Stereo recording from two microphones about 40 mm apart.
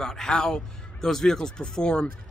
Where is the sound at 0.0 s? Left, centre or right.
Centre.